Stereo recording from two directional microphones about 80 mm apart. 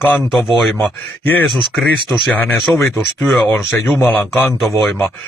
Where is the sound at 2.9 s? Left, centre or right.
Centre.